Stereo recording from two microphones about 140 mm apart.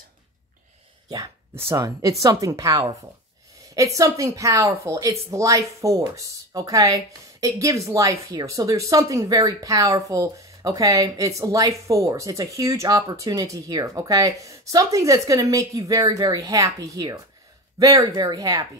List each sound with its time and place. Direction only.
1.0 s speech: 25° right (ahead or behind)